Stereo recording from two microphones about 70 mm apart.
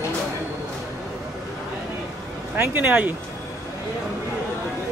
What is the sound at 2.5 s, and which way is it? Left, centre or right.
Speech, right.